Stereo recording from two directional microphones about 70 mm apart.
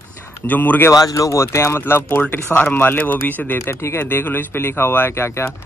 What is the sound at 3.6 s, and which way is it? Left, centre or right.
Speech, left.